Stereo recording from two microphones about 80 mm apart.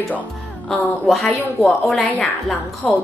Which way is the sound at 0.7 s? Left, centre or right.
Centre.